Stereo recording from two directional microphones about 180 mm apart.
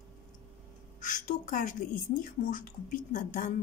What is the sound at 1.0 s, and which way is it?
A woman's voice, 45° left (ahead or behind).